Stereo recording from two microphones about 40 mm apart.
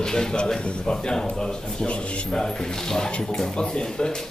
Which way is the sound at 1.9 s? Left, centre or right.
Left.